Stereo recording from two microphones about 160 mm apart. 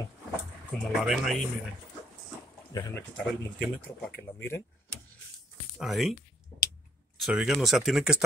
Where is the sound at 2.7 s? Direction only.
25° left (ahead or behind).